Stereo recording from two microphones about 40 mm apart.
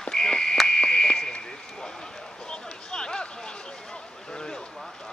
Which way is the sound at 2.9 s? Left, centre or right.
Centre.